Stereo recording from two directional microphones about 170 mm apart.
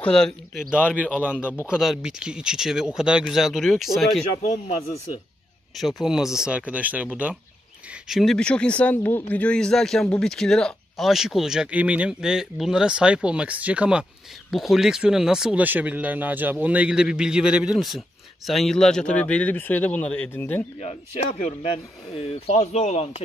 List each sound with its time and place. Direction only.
0.0 s speech: 5° left (ahead or behind)
4.6 s speech: 40° left (ahead or behind)
5.8 s speech: centre (ahead or behind)
22.1 s speech: 40° left (ahead or behind)